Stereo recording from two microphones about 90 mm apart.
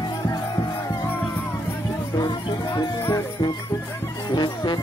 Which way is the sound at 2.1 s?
45° left (ahead or behind).